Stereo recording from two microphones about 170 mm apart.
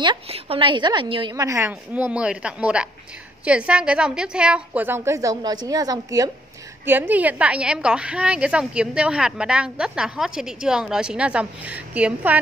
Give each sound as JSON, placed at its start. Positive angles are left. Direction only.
{"t": 0.0, "sound": "a woman's voice", "side_deg": -30}
{"t": 1.3, "sound": "a woman's voice", "side_deg": -20}